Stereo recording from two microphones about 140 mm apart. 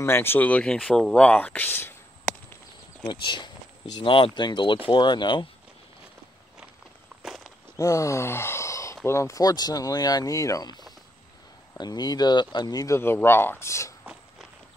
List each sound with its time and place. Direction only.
0.0 s speech: 15° left (ahead or behind)
3.1 s speech: 35° left (ahead or behind)
7.2 s walk: centre (ahead or behind)
7.7 s speech: 25° left (ahead or behind)
11.8 s speech: 30° left (ahead or behind)